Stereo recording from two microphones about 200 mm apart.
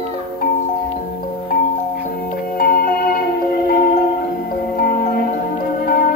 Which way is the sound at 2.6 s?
50° left (ahead or behind).